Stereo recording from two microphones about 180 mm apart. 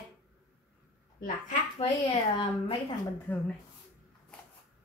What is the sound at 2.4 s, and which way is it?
Speech, 25° left (ahead or behind).